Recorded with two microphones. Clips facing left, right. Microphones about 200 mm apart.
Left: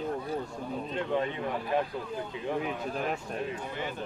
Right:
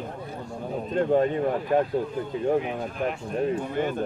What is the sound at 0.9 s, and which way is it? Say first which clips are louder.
Speech: right 10 dB; 45° right (ahead or behind).